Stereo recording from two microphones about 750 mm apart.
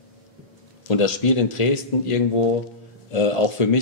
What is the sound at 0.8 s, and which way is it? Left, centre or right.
A man's voice, left.